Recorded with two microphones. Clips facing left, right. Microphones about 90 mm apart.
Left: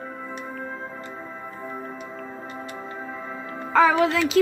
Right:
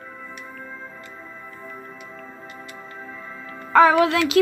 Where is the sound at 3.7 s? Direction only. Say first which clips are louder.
Right 3 dB; 60° right (ahead or behind).